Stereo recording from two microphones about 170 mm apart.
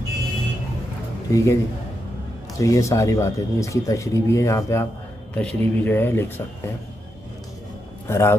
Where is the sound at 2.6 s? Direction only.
20° left (ahead or behind).